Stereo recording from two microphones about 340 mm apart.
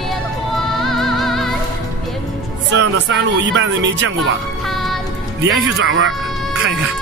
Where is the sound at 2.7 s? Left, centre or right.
Right.